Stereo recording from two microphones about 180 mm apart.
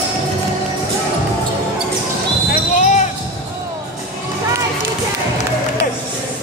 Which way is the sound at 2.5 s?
45° left (ahead or behind).